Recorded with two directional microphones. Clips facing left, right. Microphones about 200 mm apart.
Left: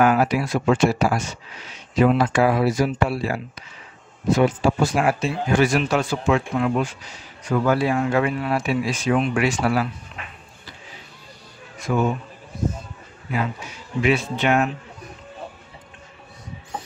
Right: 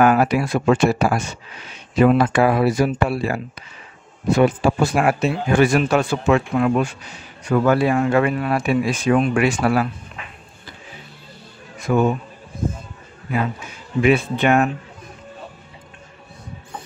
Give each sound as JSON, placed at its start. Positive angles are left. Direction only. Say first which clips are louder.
{"t": 0.0, "sound": "speech", "louder": "right 2 dB", "side_deg": -55}
{"t": 11.9, "sound": "speech", "louder": "right 4 dB", "side_deg": -50}
{"t": 13.3, "sound": "speech", "louder": "right 3 dB", "side_deg": -50}